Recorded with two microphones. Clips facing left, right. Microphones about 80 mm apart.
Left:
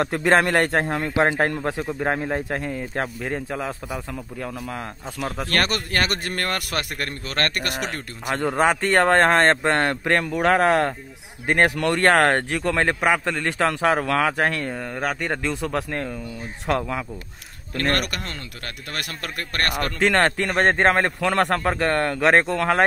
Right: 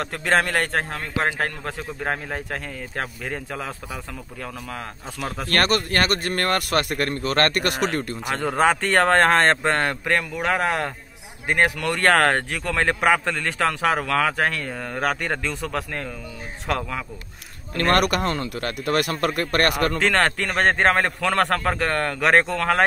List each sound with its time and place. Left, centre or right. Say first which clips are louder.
0.0 s a man's voice: left 3 dB; centre
7.0 s a man's voice: right 5 dB; right
8.3 s speech: even; centre
14.7 s a man's voice: right 1 dB; centre
15.4 s speech: left 2 dB; left
18.1 s a man's voice: right 9 dB; right
20.0 s speech: left 6 dB; left